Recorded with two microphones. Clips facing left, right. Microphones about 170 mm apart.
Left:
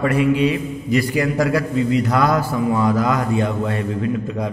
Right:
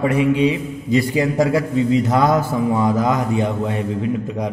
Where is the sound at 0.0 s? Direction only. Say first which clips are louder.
Right 1 dB; 20° right (ahead or behind).